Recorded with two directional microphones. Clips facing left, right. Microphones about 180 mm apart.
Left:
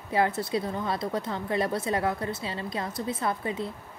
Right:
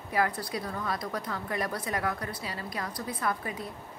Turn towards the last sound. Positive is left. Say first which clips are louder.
# left 3 dB
turn(degrees=25)  # may be behind; listen again after turning